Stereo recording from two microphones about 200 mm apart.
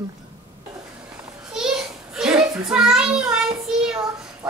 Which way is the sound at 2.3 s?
20° right (ahead or behind).